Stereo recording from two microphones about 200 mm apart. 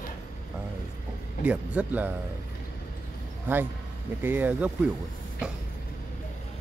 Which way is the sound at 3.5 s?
10° right (ahead or behind).